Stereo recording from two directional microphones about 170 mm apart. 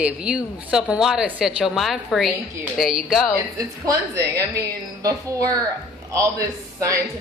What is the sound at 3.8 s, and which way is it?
A woman's voice, 20° right (ahead or behind).